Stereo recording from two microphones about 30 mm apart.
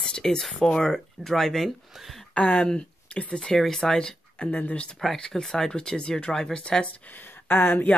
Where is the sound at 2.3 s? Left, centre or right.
Left.